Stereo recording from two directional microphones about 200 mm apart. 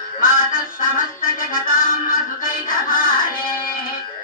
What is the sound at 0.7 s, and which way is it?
Music, 45° left (ahead or behind).